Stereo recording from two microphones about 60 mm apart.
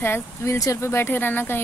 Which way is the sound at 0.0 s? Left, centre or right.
Left.